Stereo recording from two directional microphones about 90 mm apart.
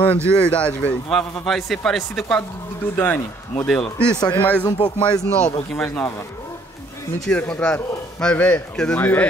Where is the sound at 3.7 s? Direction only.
10° left (ahead or behind).